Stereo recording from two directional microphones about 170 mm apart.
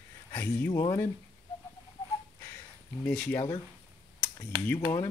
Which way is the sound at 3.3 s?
25° left (ahead or behind).